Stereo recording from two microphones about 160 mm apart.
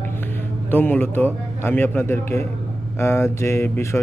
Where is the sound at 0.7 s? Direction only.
10° left (ahead or behind).